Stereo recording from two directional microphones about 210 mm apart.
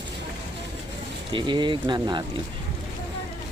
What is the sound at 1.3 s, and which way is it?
Speech, 25° right (ahead or behind).